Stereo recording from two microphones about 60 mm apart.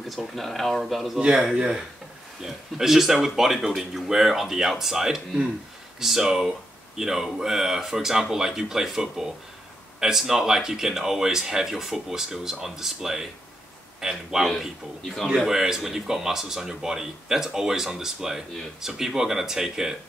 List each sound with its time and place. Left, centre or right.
0.1 s speech: centre
1.2 s speech: centre